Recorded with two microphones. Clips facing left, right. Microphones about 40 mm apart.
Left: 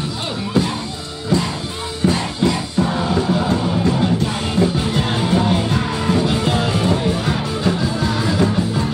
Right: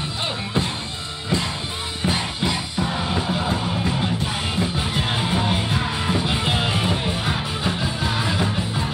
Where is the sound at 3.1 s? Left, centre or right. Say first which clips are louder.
Left 5 dB; centre.